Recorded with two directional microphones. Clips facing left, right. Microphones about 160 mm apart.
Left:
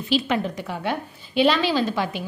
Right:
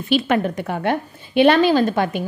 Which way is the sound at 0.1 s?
55° right (ahead or behind).